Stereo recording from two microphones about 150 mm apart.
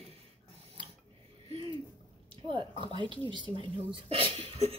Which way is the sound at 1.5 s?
35° right (ahead or behind).